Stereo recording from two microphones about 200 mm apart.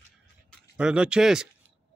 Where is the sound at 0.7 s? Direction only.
5° right (ahead or behind).